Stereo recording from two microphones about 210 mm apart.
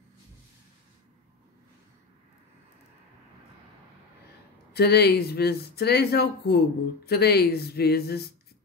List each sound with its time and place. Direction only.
4.7 s speech: 50° left (ahead or behind)